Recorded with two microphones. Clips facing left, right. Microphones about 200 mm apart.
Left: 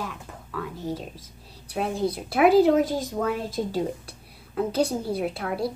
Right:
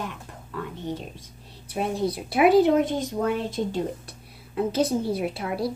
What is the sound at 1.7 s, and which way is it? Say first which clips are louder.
Speech: even; centre (ahead or behind).